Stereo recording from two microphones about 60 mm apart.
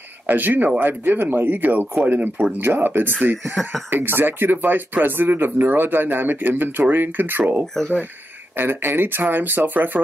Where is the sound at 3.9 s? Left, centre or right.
Right.